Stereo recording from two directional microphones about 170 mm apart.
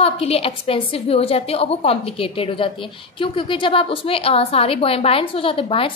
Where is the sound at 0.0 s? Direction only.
35° left (ahead or behind).